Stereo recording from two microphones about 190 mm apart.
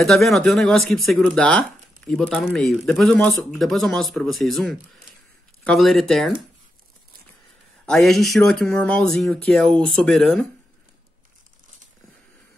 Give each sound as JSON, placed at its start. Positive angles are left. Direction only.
{"t": 0.0, "sound": "speech", "side_deg": 0}
{"t": 7.8, "sound": "speech", "side_deg": 0}